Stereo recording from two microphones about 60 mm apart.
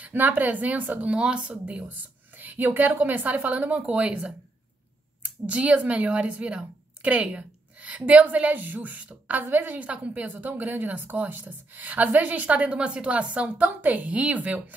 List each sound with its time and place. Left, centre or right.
0.0 s speech: right
1.9 s speech: right